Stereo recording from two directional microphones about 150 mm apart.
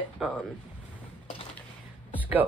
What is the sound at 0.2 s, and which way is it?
Speech, 5° right (ahead or behind).